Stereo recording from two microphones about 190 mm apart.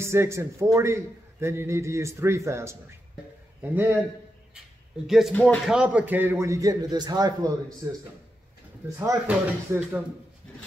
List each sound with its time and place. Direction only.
0.0 s a man's voice: 15° right (ahead or behind)
5.0 s a man's voice: centre (ahead or behind)
5.7 s a man's voice: 5° right (ahead or behind)
8.9 s a man's voice: 15° right (ahead or behind)